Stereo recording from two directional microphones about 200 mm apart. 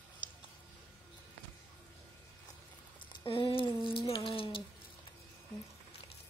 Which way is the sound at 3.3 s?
25° left (ahead or behind).